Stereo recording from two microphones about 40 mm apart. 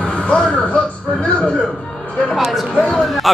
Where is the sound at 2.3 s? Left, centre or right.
Centre.